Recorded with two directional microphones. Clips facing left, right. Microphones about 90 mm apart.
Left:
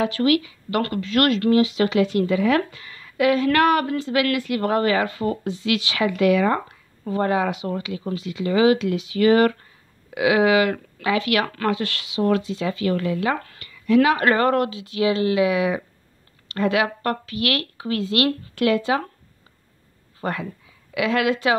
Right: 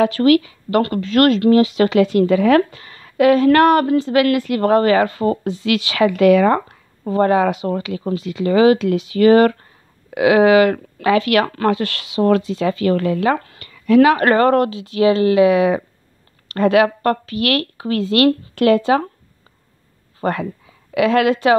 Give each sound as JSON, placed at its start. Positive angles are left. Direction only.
{"t": 0.0, "sound": "speech", "side_deg": -50}
{"t": 1.5, "sound": "speech", "side_deg": -50}
{"t": 20.2, "sound": "speech", "side_deg": -50}